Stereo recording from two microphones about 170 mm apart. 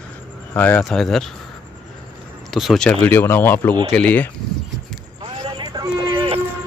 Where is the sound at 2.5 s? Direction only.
Centre (ahead or behind).